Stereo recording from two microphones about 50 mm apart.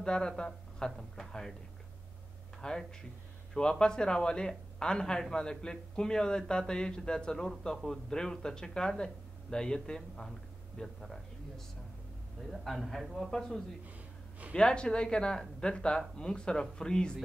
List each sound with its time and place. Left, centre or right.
0.0 s a man's voice: centre
2.6 s a man's voice: centre